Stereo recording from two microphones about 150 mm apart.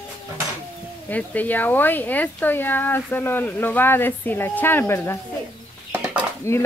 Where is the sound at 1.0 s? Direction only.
10° left (ahead or behind).